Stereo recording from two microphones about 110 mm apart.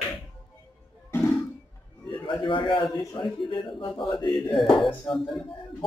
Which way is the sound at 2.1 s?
45° left (ahead or behind).